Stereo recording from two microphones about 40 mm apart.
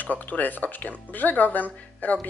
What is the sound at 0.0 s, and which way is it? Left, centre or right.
A woman's voice, left.